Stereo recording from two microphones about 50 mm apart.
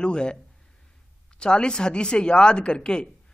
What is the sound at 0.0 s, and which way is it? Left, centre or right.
Speech, centre.